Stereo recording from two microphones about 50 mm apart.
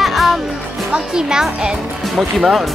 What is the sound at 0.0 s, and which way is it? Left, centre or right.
Music, centre.